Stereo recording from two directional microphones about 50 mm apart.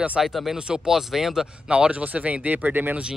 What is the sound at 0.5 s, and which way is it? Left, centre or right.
Speech, centre.